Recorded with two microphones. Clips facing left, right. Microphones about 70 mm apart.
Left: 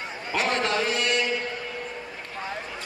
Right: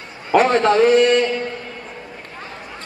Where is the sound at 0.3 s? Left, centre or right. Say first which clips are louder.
Right 11 dB; right.